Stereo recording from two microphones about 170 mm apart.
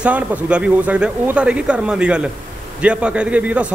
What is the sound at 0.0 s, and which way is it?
A man's voice, 10° right (ahead or behind).